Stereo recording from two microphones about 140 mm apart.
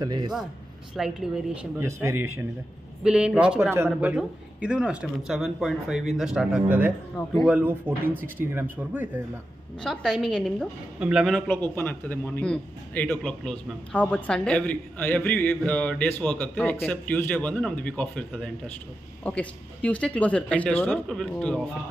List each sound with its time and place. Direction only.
0.0 s a man's voice: 30° right (ahead or behind)
0.9 s speech: 5° right (ahead or behind)
1.8 s speech: 20° right (ahead or behind)
3.0 s a man's voice: 5° right (ahead or behind)
9.8 s speech: centre (ahead or behind)
11.4 s a man's voice: 15° left (ahead or behind)